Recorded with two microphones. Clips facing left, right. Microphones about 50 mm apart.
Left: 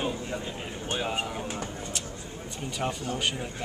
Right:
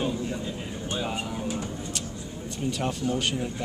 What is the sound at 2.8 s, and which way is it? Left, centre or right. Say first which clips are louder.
Speech: right 1 dB; centre.